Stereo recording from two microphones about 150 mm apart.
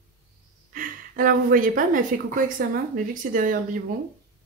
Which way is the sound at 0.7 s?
65° right (ahead or behind).